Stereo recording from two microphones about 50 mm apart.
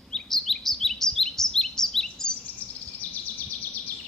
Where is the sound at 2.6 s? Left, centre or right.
Left.